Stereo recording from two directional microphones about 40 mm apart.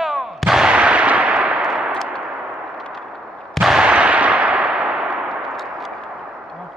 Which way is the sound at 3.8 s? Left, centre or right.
Right.